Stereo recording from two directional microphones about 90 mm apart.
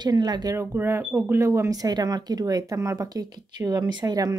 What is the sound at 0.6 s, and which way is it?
Speech, 30° right (ahead or behind).